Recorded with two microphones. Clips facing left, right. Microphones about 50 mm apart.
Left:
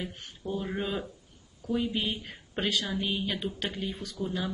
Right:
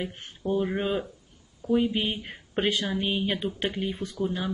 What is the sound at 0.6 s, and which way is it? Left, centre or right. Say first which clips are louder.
Speech: right 5 dB; centre.